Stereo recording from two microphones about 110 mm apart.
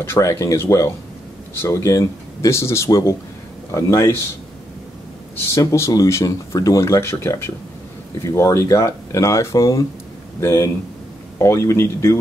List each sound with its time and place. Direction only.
0.0 s speech: 25° left (ahead or behind)
5.5 s speech: 30° left (ahead or behind)